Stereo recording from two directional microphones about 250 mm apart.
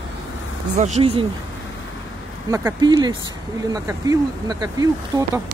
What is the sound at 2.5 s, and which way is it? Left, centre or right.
Speech, centre.